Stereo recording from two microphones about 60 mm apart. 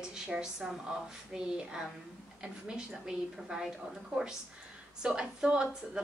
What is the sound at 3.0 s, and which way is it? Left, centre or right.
Speech, centre.